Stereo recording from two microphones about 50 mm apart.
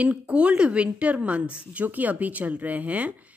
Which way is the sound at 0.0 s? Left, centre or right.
Right.